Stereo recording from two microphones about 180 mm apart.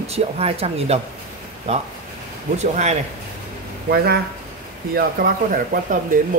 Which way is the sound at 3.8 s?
60° right (ahead or behind).